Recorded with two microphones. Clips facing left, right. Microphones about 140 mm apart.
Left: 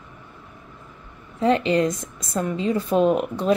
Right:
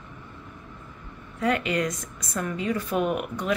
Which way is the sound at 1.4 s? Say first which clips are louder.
Left 6 dB; 25° left (ahead or behind).